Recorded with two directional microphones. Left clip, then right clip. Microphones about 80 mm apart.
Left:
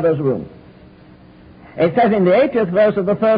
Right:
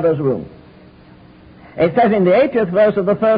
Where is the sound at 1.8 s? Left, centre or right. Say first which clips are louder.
Right 1 dB; right.